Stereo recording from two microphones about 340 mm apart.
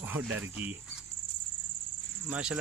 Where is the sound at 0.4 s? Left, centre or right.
Centre.